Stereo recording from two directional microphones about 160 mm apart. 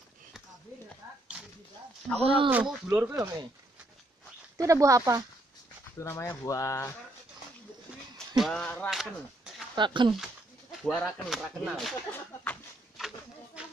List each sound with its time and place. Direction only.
2.1 s speech: 35° right (ahead or behind)
2.5 s speech: 10° right (ahead or behind)
4.6 s speech: 20° right (ahead or behind)
5.9 s speech: 15° left (ahead or behind)
8.4 s speech: 5° left (ahead or behind)
9.8 s speech: 30° right (ahead or behind)
10.1 s speech: centre (ahead or behind)